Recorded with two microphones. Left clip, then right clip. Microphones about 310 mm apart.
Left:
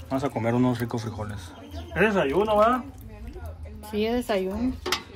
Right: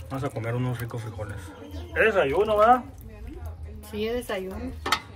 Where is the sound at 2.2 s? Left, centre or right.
Centre.